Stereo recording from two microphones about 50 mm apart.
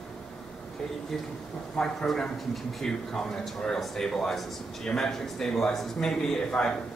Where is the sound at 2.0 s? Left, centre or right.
Centre.